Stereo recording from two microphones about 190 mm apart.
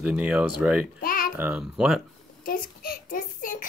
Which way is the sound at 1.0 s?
50° left (ahead or behind).